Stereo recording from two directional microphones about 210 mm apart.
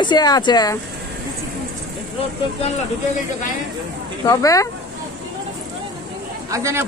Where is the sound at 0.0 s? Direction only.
20° left (ahead or behind).